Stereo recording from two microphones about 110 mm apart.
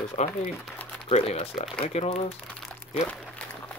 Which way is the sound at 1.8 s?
80° left.